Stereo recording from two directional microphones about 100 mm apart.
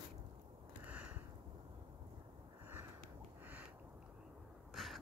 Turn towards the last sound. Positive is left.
turn(degrees=0)  # may be behind; listen again after turning